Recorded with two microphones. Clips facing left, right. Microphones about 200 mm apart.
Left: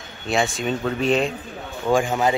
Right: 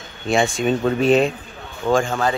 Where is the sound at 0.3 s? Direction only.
Centre (ahead or behind).